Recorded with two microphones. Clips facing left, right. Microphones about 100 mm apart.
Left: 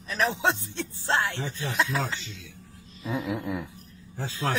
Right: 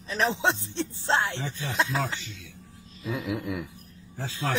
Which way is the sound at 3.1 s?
30° left (ahead or behind).